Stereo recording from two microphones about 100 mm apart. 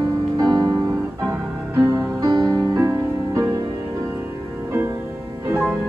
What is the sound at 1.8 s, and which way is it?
Music, 40° right (ahead or behind).